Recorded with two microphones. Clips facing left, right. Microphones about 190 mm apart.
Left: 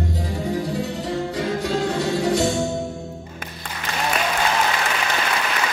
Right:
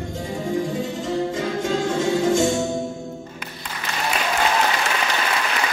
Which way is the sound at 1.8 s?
45° right (ahead or behind).